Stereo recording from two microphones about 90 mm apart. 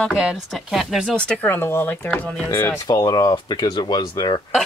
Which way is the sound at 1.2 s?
15° left (ahead or behind).